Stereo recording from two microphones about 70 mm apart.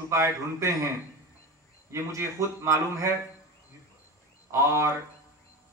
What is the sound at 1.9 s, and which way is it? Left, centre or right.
A man's voice, right.